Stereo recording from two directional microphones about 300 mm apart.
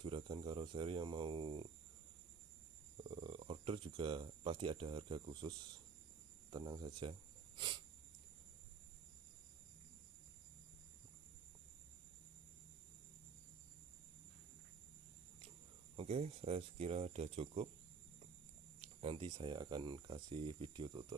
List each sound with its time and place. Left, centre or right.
0.0 s speech: centre
3.0 s speech: centre
16.0 s speech: centre
18.8 s speech: centre